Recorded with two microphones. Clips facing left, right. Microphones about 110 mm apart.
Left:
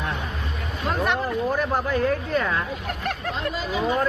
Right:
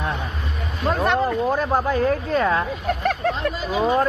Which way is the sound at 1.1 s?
25° right (ahead or behind).